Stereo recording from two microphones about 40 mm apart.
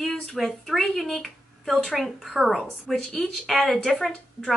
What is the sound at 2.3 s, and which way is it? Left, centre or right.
Speech, centre.